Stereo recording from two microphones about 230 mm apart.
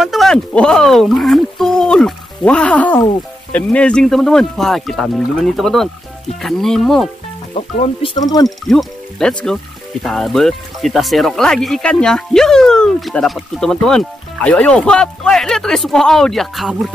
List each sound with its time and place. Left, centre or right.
0.0 s speech: centre
7.5 s speech: left
8.5 s speech: centre